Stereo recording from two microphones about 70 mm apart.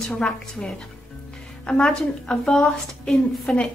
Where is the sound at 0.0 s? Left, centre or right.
Centre.